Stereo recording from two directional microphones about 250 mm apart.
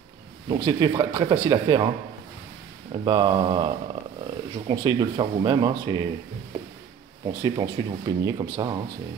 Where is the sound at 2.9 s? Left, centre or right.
Centre.